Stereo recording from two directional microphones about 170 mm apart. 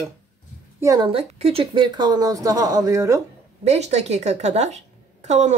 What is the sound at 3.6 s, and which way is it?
A woman's voice, 40° right (ahead or behind).